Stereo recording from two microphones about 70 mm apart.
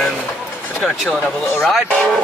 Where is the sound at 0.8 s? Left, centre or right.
Centre.